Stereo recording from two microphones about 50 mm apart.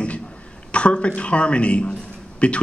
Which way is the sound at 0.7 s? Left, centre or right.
Left.